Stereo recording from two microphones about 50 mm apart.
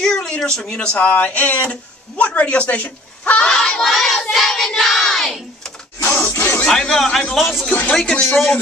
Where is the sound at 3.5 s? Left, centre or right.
Centre.